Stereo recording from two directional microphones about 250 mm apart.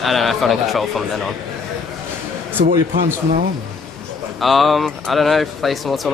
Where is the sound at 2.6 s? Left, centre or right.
Right.